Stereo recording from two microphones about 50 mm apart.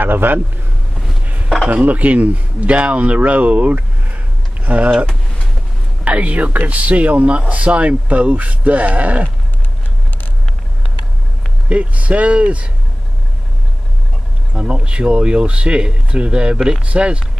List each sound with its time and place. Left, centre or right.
0.0 s a man's voice: right
1.7 s speech: right
6.0 s speech: right
11.7 s speech: right
14.5 s speech: centre